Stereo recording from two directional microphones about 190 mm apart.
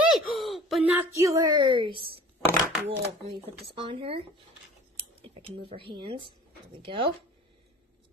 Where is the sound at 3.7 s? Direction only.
30° right (ahead or behind).